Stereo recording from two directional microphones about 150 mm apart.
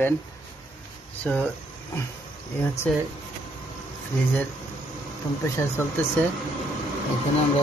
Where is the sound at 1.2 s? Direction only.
10° left (ahead or behind).